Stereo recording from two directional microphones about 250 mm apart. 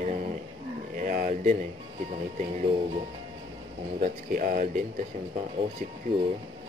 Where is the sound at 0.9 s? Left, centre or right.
Right.